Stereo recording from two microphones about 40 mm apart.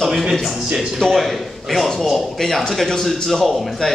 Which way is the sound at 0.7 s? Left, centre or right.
Centre.